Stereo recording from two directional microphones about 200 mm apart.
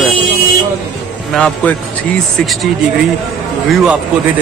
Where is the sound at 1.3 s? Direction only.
5° left (ahead or behind).